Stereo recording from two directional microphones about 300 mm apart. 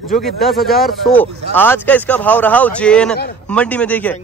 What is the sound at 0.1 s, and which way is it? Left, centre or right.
Speech, centre.